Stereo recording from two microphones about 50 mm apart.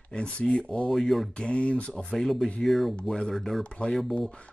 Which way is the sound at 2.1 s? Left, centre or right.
Centre.